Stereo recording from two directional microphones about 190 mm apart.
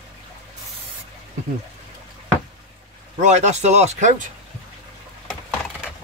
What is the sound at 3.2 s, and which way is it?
Speech, 40° right (ahead or behind).